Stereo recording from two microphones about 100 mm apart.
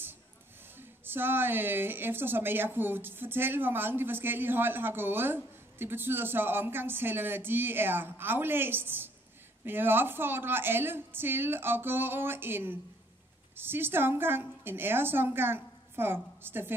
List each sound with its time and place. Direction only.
0.7 s a woman's voice: 20° right (ahead or behind)